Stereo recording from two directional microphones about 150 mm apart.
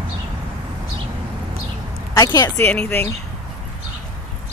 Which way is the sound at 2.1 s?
25° left (ahead or behind).